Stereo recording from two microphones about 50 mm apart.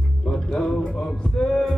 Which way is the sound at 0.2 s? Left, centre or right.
Centre.